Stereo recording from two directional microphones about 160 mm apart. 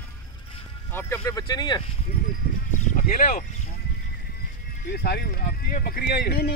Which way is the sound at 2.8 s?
50° left (ahead or behind).